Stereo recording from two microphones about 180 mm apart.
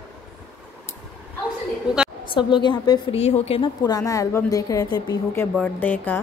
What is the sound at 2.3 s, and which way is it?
A woman's voice, 25° left (ahead or behind).